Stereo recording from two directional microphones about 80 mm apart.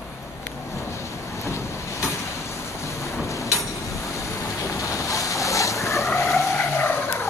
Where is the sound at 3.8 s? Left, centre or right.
Left.